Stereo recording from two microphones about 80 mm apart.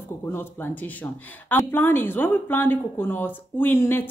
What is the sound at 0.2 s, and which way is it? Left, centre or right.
Speech, left.